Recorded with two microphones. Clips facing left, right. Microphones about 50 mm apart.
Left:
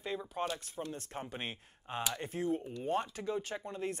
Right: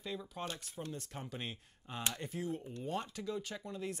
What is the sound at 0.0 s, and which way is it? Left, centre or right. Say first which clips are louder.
Speech: left 5 dB; left.